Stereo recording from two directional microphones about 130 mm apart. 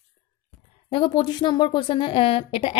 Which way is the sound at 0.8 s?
45° left (ahead or behind).